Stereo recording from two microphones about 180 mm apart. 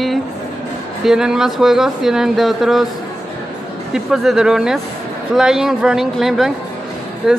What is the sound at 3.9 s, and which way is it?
A woman's voice, centre (ahead or behind).